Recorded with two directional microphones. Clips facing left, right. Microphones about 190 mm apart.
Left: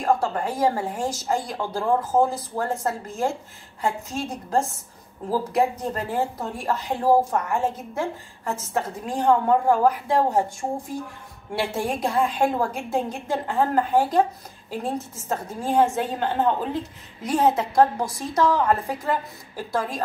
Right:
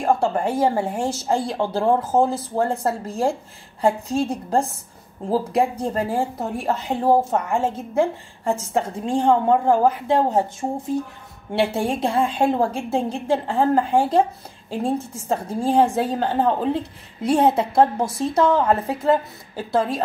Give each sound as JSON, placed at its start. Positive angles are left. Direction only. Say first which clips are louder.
{"t": 0.0, "sound": "a woman's voice", "louder": "right 3 dB", "side_deg": -30}
{"t": 11.5, "sound": "a woman's voice", "louder": "right 4 dB", "side_deg": -25}